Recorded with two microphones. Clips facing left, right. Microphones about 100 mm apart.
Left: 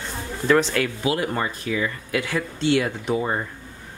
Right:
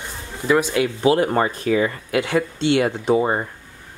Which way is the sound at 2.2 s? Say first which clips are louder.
Right 3 dB; 25° right (ahead or behind).